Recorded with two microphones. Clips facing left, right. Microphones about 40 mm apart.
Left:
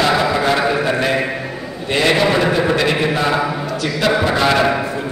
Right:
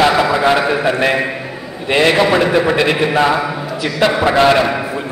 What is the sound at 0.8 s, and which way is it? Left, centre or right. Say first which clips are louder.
A man's voice: right 2 dB; right.